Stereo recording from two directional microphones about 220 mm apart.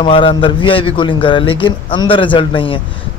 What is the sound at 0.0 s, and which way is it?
Speech, 25° left (ahead or behind).